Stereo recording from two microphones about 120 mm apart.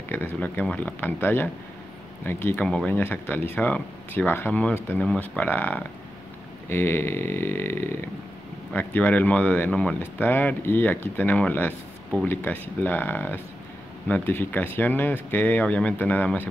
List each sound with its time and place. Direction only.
0.1 s speech: 15° left (ahead or behind)
2.6 s speech: 5° left (ahead or behind)